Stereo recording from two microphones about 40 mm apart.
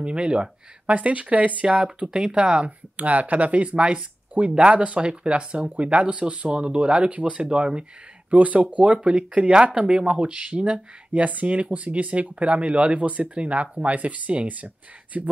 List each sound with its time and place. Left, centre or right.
0.0 s speech: right
0.8 s speech: right
2.1 s speech: right
3.0 s speech: right
7.4 s speech: right
8.3 s speech: right